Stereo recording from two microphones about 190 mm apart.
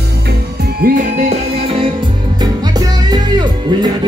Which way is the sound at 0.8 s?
40° right (ahead or behind).